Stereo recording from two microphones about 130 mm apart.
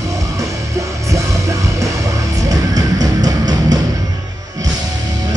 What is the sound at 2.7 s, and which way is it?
Music, 30° right (ahead or behind).